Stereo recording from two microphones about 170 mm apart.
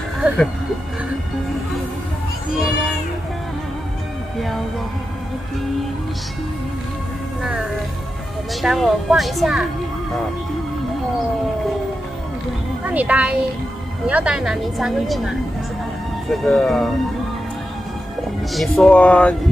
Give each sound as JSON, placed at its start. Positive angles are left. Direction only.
{"t": 2.5, "sound": "a woman's voice", "side_deg": -5}
{"t": 8.5, "sound": "a woman's voice", "side_deg": 0}
{"t": 12.8, "sound": "a woman's voice", "side_deg": -10}
{"t": 18.5, "sound": "speech", "side_deg": 0}